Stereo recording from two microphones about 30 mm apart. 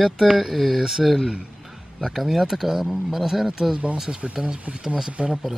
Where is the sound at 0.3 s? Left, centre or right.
Centre.